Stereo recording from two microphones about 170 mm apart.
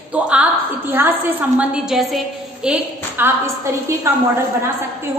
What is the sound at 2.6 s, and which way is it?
A woman's voice, 10° right (ahead or behind).